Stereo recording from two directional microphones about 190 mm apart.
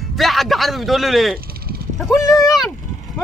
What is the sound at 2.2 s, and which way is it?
Vehicle, 15° left (ahead or behind).